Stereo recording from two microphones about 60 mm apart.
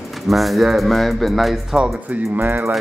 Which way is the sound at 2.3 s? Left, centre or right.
Right.